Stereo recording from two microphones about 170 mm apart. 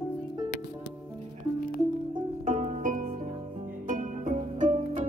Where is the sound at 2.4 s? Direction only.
45° right (ahead or behind).